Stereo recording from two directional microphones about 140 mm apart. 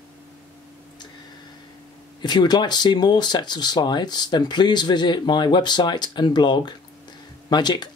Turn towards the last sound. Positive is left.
turn(degrees=30)  # may be behind; listen again after turning